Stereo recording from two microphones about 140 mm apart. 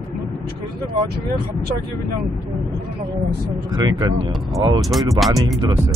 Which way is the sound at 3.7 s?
30° right (ahead or behind).